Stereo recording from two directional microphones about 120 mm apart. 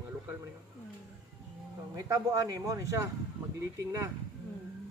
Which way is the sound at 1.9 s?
25° right (ahead or behind).